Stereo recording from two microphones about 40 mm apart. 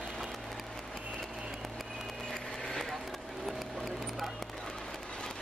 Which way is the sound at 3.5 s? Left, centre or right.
Centre.